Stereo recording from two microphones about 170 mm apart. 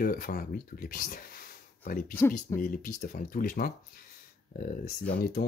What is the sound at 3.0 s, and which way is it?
Speech, 55° left (ahead or behind).